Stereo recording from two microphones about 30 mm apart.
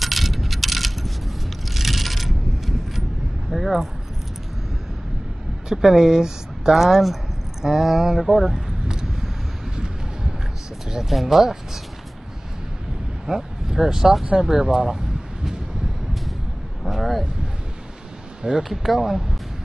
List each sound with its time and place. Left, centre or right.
0.0 s coin: centre
3.5 s speech: centre
5.7 s speech: centre
6.8 s speech: centre
11.0 s speech: centre
13.3 s speech: centre
16.8 s speech: centre
18.6 s speech: centre